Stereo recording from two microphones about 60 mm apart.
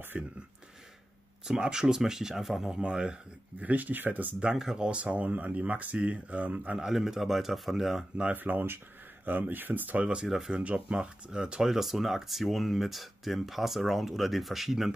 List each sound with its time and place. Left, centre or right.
0.1 s speech: centre
1.4 s speech: centre
2.7 s speech: centre
3.5 s speech: right
4.4 s speech: centre
6.8 s speech: centre
8.2 s speech: right
10.2 s speech: centre
10.5 s speech: centre